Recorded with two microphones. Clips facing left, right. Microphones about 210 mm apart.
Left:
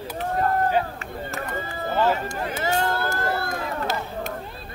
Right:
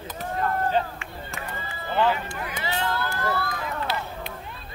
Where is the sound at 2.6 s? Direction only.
45° left (ahead or behind).